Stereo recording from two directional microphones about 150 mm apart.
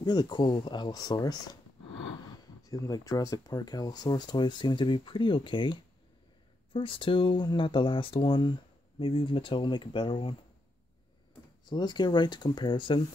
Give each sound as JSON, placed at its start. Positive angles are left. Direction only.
{"t": 0.0, "sound": "speech", "side_deg": 30}
{"t": 11.6, "sound": "speech", "side_deg": 30}